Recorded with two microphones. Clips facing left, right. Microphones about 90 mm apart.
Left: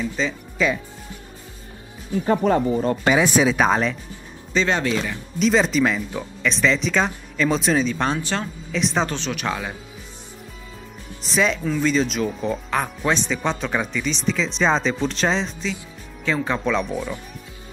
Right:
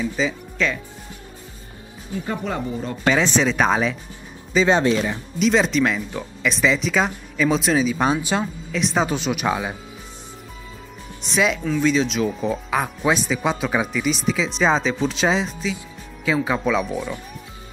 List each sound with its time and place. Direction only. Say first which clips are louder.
0.0 s speech: right 2 dB; 5° right (ahead or behind)
0.6 s speech: left 2 dB; 5° left (ahead or behind)
2.2 s speech: left 8 dB; 45° left (ahead or behind)
3.1 s speech: even; 10° left (ahead or behind)
4.6 s speech: right 4 dB; 20° right (ahead or behind)
5.4 s speech: even; centre (ahead or behind)
11.2 s speech: even; centre (ahead or behind)